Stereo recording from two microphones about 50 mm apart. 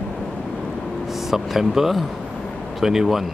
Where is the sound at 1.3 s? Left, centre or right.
Centre.